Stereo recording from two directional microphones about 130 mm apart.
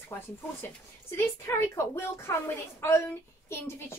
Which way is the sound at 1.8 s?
20° left (ahead or behind).